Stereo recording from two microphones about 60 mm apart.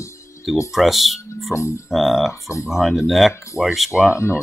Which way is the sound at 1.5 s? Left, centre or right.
Left.